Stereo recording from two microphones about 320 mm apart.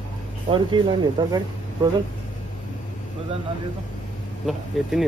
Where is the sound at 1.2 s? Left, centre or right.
Centre.